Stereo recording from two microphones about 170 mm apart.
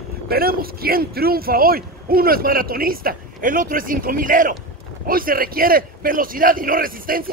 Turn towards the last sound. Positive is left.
turn(degrees=-55)  # may be behind; listen again after turning